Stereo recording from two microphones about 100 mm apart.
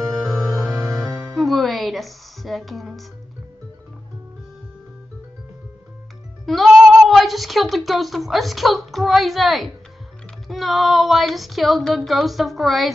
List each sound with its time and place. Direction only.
0.1 s music: centre (ahead or behind)
0.6 s music: 35° right (ahead or behind)
1.3 s music: centre (ahead or behind)
6.4 s speech: centre (ahead or behind)